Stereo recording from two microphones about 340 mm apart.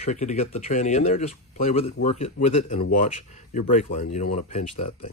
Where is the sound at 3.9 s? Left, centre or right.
Centre.